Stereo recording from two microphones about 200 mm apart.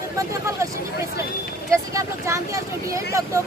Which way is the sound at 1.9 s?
15° right (ahead or behind).